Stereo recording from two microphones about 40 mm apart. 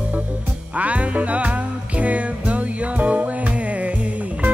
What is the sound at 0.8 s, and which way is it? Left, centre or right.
Music, right.